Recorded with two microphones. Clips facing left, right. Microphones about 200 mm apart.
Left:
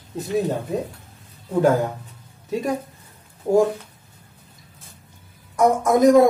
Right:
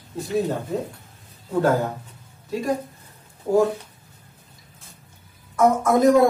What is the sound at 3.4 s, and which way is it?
Speech, 20° left (ahead or behind).